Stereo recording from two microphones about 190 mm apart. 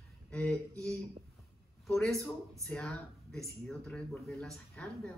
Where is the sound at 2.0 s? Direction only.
15° right (ahead or behind).